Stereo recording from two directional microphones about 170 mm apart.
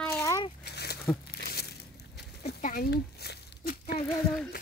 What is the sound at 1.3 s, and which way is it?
Crumpling, 70° left (ahead or behind).